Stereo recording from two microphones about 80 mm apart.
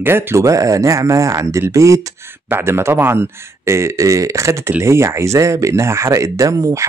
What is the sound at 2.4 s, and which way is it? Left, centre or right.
Speech, right.